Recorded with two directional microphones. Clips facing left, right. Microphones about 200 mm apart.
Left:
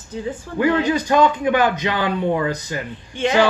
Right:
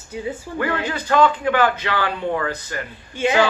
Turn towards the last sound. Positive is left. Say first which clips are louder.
# left 1 dB
turn(degrees=-10)  # may be behind; listen again after turning